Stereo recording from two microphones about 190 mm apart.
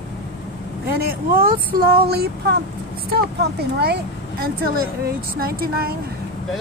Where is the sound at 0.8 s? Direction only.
55° right (ahead or behind).